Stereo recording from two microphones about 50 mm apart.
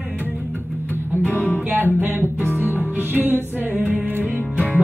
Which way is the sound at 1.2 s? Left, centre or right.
Left.